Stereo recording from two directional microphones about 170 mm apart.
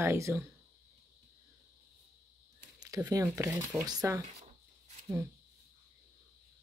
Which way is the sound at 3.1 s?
20° right (ahead or behind).